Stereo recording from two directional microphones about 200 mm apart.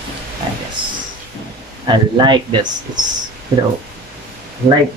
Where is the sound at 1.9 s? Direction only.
20° right (ahead or behind).